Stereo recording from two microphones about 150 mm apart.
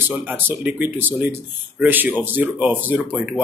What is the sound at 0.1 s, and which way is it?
A man's voice, 10° right (ahead or behind).